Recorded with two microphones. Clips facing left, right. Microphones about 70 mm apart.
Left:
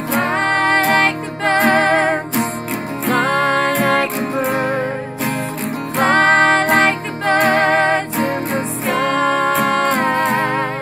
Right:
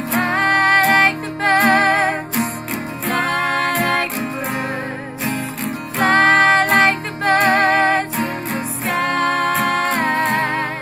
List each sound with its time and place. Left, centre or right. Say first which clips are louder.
0.1 s music: even; centre
5.9 s music: left 1 dB; centre
9.5 s music: left 2 dB; centre